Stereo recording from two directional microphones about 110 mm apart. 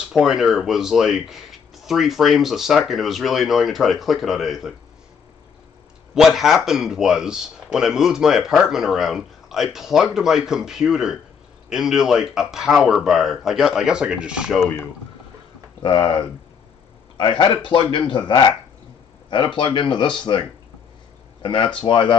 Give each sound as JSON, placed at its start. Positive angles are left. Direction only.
{"t": 0.1, "sound": "speech", "side_deg": -5}
{"t": 6.1, "sound": "speech", "side_deg": -5}
{"t": 15.8, "sound": "speech", "side_deg": 45}